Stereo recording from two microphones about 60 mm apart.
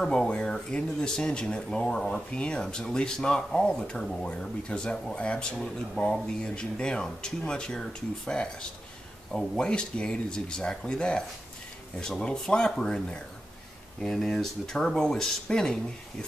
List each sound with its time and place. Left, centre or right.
0.0 s speech: centre
5.1 s speech: centre
9.3 s speech: centre